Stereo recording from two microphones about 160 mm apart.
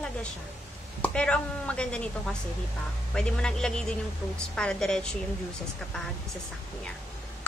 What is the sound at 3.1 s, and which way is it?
A woman's voice, 5° left (ahead or behind).